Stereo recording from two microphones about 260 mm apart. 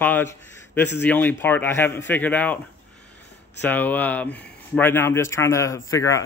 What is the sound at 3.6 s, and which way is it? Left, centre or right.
Speech, centre.